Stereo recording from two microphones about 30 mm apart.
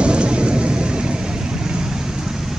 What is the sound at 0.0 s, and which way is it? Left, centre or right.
Vehicle, right.